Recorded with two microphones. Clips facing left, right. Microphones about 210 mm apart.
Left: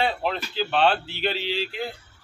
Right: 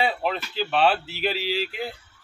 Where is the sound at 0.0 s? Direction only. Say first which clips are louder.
Even; centre (ahead or behind).